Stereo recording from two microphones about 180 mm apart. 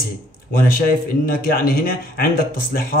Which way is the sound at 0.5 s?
50° left (ahead or behind).